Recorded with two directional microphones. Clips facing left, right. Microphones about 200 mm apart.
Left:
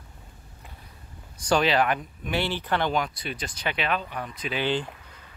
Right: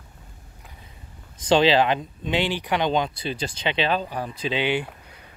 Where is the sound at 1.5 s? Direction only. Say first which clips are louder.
Right 4 dB; 25° right (ahead or behind).